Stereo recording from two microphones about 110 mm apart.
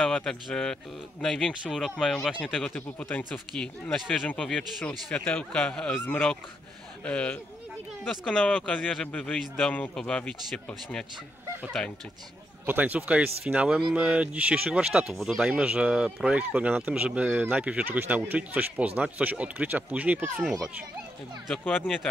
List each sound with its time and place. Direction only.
0.0 s a man's voice: 5° left (ahead or behind)
8.4 s a man's voice: 10° left (ahead or behind)
12.6 s speech: 15° right (ahead or behind)